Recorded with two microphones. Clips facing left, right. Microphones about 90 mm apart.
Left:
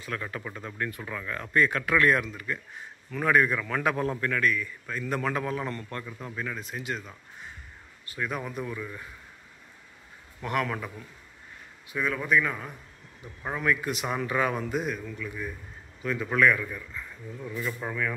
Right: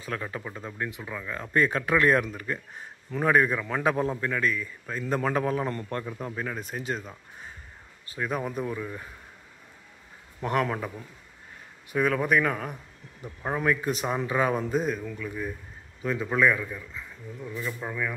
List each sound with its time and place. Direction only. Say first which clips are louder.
0.2 s a man's voice: right 1 dB; 20° right (ahead or behind); by 7.1 s 35° right (ahead or behind)
8.2 s a man's voice: right 3 dB; 35° right (ahead or behind)
10.4 s a man's voice: right 3 dB; 35° right (ahead or behind)
11.9 s speech: right 2 dB; 50° right (ahead or behind)
13.6 s a man's voice: right 1 dB; 35° right (ahead or behind)
16.0 s speech: even; 25° right (ahead or behind)
17.4 s speech: left 1 dB; 5° right (ahead or behind)